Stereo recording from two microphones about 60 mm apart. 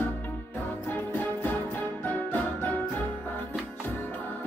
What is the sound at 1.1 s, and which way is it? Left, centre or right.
Music, left.